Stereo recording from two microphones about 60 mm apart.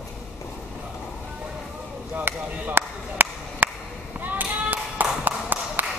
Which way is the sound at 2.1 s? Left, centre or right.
Right.